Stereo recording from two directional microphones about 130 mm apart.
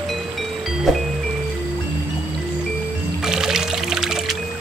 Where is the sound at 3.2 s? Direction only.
5° right (ahead or behind).